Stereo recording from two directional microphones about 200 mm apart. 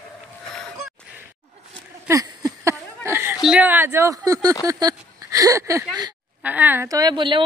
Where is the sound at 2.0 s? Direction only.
15° right (ahead or behind).